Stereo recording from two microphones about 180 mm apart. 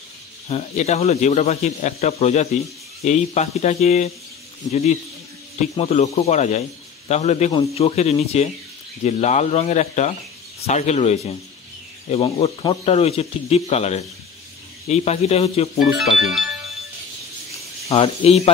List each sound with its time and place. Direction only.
0.5 s speech: 35° left (ahead or behind)
5.8 s speech: 35° left (ahead or behind)
16.0 s speech: centre (ahead or behind)
17.9 s speech: 30° left (ahead or behind)